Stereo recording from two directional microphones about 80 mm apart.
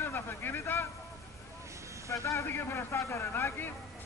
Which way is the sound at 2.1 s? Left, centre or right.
Left.